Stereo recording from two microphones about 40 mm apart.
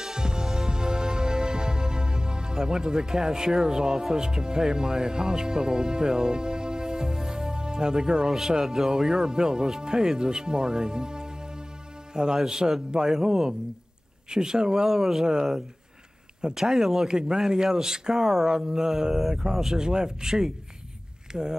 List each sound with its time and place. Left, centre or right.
0.0 s music: centre
12.1 s a man's voice: centre
16.6 s speech: centre
17.1 s speech: right
19.8 s speech: centre